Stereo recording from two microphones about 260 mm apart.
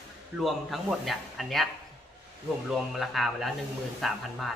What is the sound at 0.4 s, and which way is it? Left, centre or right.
A man's voice, centre.